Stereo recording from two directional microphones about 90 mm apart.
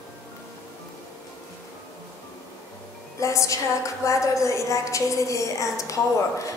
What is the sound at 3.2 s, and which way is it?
A woman's voice, 35° left (ahead or behind).